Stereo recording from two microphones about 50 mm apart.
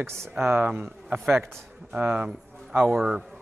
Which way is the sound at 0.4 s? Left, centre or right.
Right.